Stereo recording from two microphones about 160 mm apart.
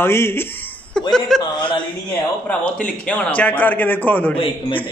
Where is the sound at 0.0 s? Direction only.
15° left (ahead or behind).